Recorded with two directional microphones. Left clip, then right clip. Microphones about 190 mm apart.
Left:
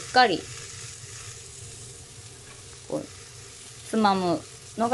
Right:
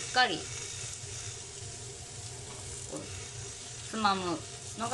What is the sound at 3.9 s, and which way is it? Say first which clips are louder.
Sizzle: left 7 dB; 35° left (ahead or behind).